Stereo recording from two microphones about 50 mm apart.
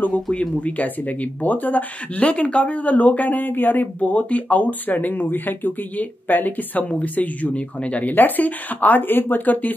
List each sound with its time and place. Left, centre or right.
0.3 s speech: left